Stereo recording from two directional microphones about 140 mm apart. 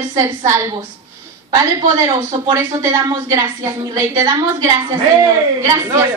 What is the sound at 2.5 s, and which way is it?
A woman's voice, 20° right (ahead or behind).